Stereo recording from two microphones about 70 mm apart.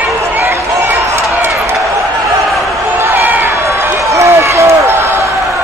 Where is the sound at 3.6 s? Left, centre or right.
Right.